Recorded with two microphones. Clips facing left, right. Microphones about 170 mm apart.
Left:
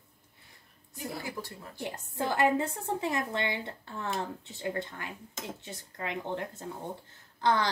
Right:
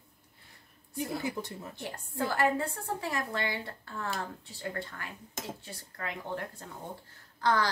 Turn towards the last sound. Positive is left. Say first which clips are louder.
# left 1 dB
turn(degrees=20)  # may be behind; listen again after turning